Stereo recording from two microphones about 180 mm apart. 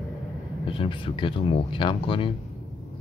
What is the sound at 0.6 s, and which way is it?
Speech, 30° left (ahead or behind).